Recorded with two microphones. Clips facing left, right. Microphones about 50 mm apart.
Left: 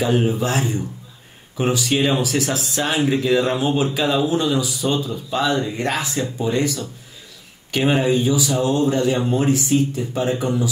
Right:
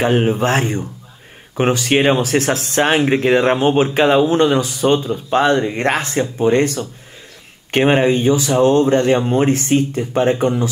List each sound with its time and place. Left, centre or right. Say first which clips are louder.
0.0 s speech: right 4 dB; right